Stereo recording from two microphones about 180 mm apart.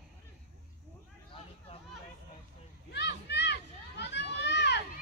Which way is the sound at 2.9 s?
70° left (ahead or behind).